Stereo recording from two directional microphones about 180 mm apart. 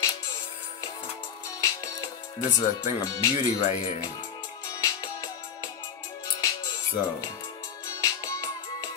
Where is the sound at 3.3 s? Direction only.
45° left (ahead or behind).